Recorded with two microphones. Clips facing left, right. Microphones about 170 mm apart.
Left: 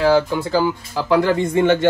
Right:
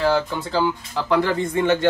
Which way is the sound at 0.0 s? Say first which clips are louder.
Left 5 dB; 10° left (ahead or behind).